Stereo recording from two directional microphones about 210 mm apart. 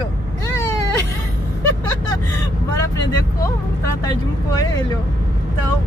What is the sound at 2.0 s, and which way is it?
Vehicle, 15° left (ahead or behind).